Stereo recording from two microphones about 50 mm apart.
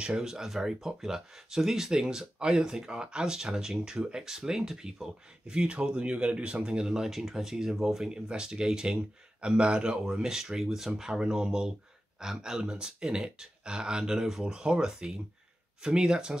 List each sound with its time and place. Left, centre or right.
0.0 s speech: centre
8.1 s speech: centre